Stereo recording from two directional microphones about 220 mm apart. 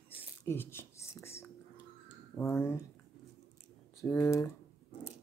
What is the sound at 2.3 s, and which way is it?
Speech, 10° left (ahead or behind).